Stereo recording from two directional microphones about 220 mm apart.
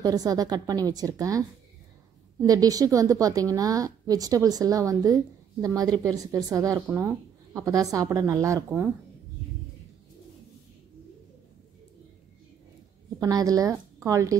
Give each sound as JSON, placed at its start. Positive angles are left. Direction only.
{"t": 0.0, "sound": "a woman's voice", "side_deg": -15}
{"t": 2.4, "sound": "a woman's voice", "side_deg": -15}
{"t": 13.2, "sound": "speech", "side_deg": -15}